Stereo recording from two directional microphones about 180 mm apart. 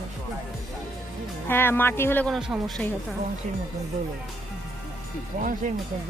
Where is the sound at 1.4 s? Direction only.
10° left (ahead or behind).